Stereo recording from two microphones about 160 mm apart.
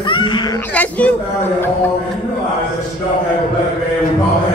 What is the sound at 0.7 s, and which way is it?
Speech, 10° left (ahead or behind).